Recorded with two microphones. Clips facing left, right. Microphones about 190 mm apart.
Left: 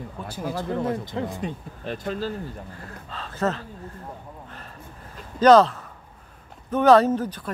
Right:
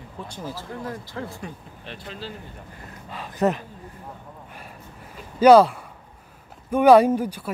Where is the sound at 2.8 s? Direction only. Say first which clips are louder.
Even; 15° right (ahead or behind).